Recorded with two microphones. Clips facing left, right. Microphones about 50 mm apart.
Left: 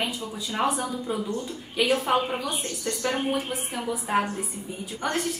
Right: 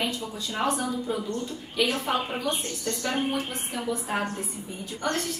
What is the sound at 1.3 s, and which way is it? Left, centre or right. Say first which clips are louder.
Speech: left 1 dB; centre.